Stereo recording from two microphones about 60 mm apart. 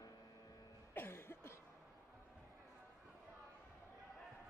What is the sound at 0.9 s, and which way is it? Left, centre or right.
Cough, left.